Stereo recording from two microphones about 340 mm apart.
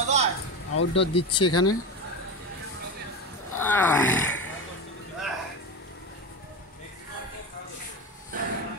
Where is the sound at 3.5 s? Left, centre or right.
Centre.